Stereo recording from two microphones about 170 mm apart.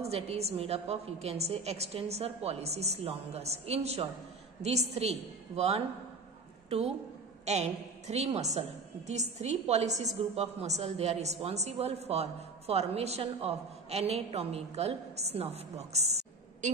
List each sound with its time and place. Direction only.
0.0 s a woman's voice: 40° right (ahead or behind)
5.6 s a woman's voice: 35° right (ahead or behind)
7.4 s a woman's voice: 40° right (ahead or behind)